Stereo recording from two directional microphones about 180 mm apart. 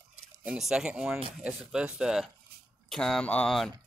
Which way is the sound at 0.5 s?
5° right (ahead or behind).